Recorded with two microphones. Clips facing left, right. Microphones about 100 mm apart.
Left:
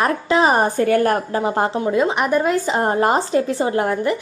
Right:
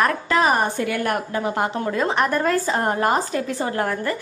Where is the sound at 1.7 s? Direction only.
15° left (ahead or behind).